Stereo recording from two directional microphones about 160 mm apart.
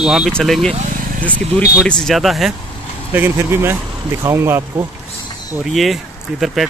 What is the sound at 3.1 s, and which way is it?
Speech, 15° right (ahead or behind).